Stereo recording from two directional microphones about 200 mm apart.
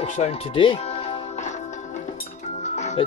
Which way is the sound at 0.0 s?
30° left (ahead or behind).